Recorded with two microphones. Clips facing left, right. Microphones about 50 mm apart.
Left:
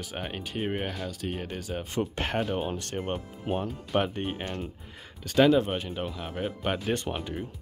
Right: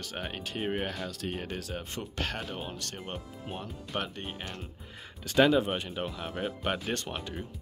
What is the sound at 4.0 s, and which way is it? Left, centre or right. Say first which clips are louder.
Speech: left 8 dB; left.